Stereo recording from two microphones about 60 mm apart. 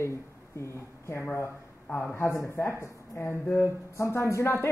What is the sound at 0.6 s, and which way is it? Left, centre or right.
A woman's voice, left.